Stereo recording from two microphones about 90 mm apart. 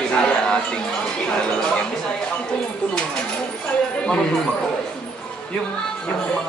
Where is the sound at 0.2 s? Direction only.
10° left (ahead or behind).